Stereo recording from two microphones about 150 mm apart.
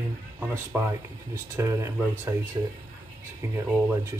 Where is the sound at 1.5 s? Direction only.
20° right (ahead or behind).